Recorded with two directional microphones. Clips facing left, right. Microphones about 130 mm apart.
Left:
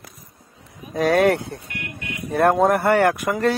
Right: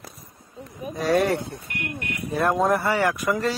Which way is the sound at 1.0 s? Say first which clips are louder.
Left 4 dB; 55° left (ahead or behind).